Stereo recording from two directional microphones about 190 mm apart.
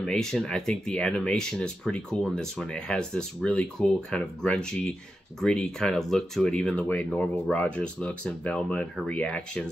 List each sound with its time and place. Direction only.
0.0 s speech: 5° left (ahead or behind)